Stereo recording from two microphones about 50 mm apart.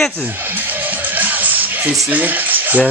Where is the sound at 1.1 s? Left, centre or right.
Right.